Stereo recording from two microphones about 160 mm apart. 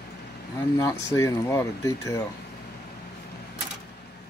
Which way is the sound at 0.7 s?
20° left (ahead or behind).